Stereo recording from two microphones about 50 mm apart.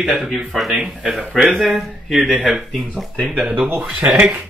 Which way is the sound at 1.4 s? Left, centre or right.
Centre.